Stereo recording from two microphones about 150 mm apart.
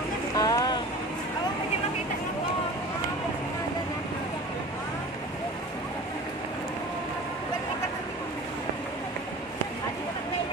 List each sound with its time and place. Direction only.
0.4 s vehicle: 25° left (ahead or behind)